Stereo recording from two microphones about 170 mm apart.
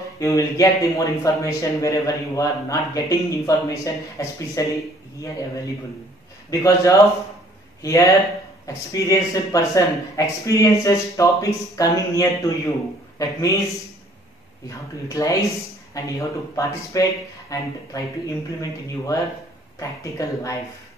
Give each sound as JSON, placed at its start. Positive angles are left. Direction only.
{"t": 0.2, "sound": "speech", "side_deg": 20}
{"t": 6.6, "sound": "a man's voice", "side_deg": 20}
{"t": 14.7, "sound": "speech", "side_deg": 20}